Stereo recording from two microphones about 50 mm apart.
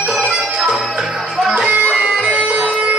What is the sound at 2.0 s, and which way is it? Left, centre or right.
Bagpipes, right.